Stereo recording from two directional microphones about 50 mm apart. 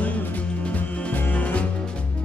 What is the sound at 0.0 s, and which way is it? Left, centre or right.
Music, left.